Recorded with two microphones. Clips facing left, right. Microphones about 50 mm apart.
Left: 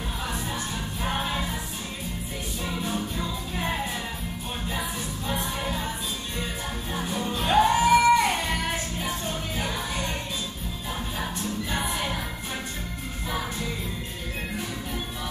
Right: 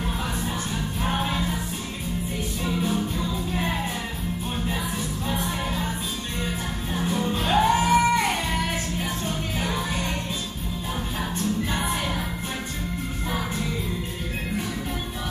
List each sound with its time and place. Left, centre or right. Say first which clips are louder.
2.9 s music: right 3 dB; centre
6.9 s music: right 4 dB; centre
9.6 s music: right 3 dB; centre